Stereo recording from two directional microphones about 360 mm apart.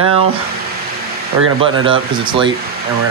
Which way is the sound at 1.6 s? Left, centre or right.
Centre.